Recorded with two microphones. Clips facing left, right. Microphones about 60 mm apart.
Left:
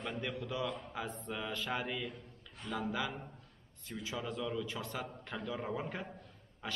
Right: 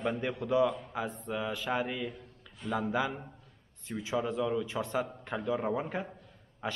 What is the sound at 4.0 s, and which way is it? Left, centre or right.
A man's voice, right.